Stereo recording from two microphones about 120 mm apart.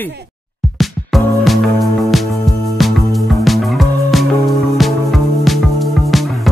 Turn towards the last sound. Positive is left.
turn(degrees=0)  # may be behind; listen again after turning